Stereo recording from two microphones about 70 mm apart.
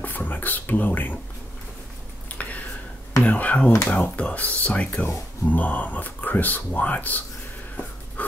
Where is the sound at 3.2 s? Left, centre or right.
Left.